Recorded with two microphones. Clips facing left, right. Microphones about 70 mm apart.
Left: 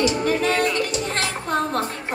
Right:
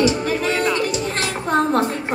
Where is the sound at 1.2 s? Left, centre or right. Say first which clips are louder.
Right 5 dB; right.